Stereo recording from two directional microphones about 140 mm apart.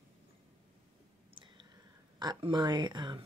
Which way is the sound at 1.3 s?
35° right (ahead or behind).